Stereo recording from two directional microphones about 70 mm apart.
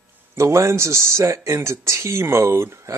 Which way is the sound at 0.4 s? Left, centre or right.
Right.